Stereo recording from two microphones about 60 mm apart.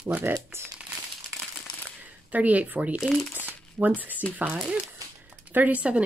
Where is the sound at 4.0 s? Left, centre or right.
Right.